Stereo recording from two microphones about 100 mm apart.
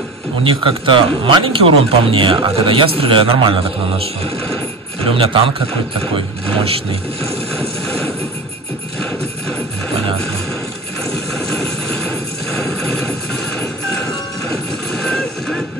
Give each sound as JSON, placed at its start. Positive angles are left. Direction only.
{"t": 0.4, "sound": "speech", "side_deg": -60}
{"t": 5.1, "sound": "speech", "side_deg": -65}
{"t": 12.5, "sound": "clip-clop", "side_deg": 5}
{"t": 15.0, "sound": "horse", "side_deg": 5}